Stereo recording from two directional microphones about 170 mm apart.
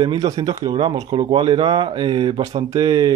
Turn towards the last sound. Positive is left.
turn(degrees=-25)  # may be behind; listen again after turning